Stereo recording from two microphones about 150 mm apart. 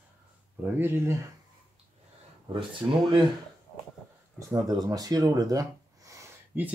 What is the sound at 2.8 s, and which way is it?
Speech, 20° right (ahead or behind).